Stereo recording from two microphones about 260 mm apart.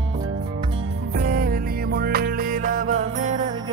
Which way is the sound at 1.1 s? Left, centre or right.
Right.